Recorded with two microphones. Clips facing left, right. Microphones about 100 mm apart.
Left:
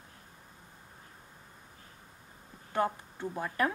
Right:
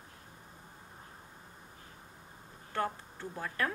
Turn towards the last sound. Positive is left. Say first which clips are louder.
# left 4 dB
turn(degrees=15)  # may be behind; listen again after turning